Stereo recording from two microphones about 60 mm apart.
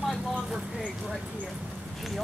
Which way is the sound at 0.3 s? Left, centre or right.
Centre.